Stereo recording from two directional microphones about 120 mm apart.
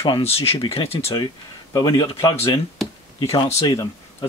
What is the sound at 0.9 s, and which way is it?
Speech, 40° left (ahead or behind).